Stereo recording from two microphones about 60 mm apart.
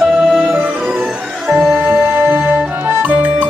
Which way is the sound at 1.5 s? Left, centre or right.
Right.